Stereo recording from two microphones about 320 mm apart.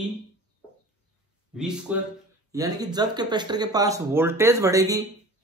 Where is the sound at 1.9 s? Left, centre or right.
Centre.